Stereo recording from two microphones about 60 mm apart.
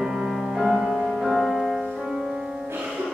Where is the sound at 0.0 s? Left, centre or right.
Centre.